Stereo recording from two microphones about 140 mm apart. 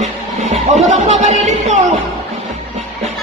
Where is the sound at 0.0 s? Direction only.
55° right (ahead or behind).